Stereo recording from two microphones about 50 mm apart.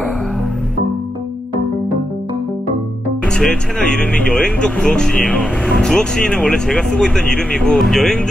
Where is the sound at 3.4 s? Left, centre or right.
Centre.